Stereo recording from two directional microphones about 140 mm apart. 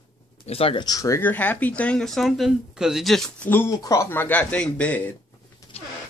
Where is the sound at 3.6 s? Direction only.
25° left (ahead or behind).